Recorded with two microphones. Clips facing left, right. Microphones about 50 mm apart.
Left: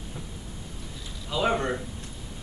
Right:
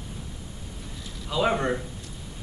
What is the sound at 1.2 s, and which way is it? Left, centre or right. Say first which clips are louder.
Speech: right 1 dB; centre.